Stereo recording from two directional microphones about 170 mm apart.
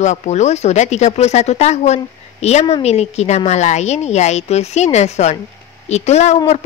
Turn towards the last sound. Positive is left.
turn(degrees=40)  # may be behind; listen again after turning